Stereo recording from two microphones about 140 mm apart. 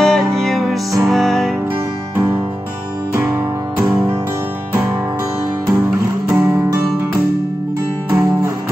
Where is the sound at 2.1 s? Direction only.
15° right (ahead or behind).